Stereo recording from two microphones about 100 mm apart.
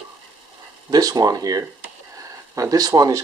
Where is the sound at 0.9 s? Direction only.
40° right (ahead or behind).